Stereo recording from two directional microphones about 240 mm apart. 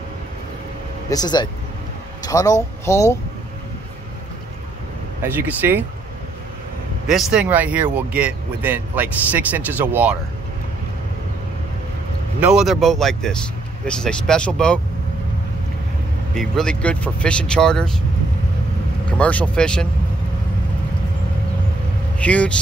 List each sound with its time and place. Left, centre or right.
1.1 s speech: centre
5.2 s speech: centre
7.1 s speech: centre
12.4 s speech: centre
16.3 s speech: centre
19.0 s speech: centre
22.2 s speech: centre